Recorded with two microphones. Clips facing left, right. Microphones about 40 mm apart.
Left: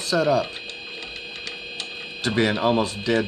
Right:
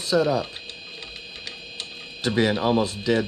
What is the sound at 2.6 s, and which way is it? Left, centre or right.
Speech, centre.